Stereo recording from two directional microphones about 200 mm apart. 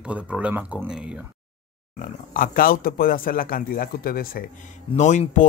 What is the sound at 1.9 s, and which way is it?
Speech, 45° left (ahead or behind).